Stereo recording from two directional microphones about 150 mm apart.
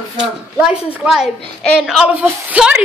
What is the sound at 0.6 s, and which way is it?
A woman's voice, 5° right (ahead or behind).